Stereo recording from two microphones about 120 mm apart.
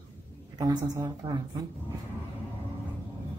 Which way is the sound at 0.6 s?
30° right (ahead or behind).